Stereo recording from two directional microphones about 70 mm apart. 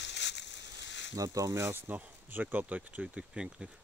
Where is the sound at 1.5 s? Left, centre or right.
Right.